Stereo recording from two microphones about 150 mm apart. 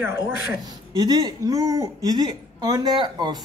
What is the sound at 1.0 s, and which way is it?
A woman's voice, 25° right (ahead or behind).